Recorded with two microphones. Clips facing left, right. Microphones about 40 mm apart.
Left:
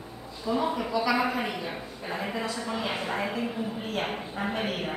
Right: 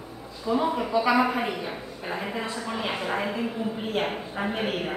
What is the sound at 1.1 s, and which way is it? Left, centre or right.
A woman's voice, centre.